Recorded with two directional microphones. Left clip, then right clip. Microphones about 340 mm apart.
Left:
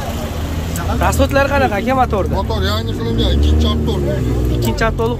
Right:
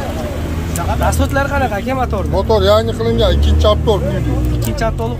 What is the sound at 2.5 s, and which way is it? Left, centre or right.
Speech, centre.